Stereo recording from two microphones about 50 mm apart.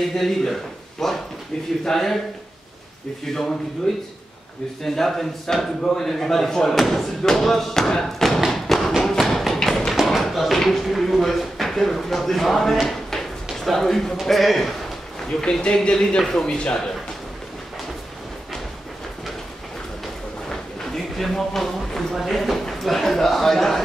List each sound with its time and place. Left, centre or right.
0.1 s speech: centre
1.0 s a sound: centre
1.9 s speech: centre
3.3 s speech: centre
8.5 s thump: centre
9.6 s tap: centre
9.9 s tap: centre
10.2 s speech: centre
13.7 s speech: centre
15.6 s speech: centre
16.2 s speech: centre
16.4 s speech: centre
20.4 s a sound: centre